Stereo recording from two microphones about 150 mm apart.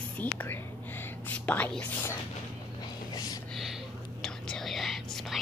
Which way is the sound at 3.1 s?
25° left (ahead or behind).